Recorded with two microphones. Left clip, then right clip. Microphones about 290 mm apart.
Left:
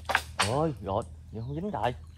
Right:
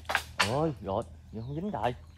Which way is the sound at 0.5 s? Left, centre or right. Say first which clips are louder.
Left 1 dB; left.